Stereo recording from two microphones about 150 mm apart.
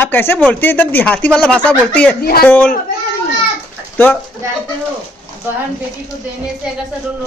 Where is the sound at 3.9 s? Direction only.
10° left (ahead or behind).